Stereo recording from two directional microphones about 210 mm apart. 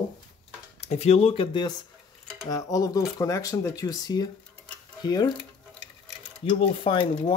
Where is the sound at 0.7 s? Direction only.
30° left (ahead or behind).